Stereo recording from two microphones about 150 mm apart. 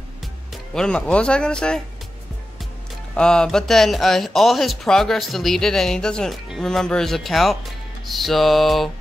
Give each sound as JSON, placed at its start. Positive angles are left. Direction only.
{"t": 0.7, "sound": "speech", "side_deg": 5}
{"t": 3.2, "sound": "speech", "side_deg": 5}